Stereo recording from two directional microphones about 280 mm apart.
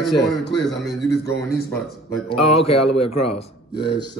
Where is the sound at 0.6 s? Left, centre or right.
Centre.